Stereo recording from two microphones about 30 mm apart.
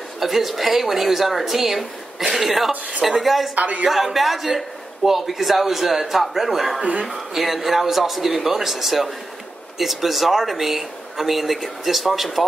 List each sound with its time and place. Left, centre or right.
0.2 s speech: centre
3.5 s speech: right
3.8 s speech: centre